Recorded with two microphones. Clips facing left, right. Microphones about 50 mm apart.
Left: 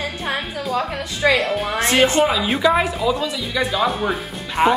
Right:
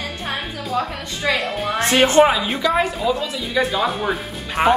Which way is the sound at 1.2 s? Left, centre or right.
Centre.